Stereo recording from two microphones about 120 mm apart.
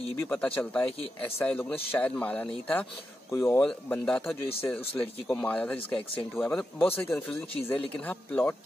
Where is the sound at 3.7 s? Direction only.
10° left (ahead or behind).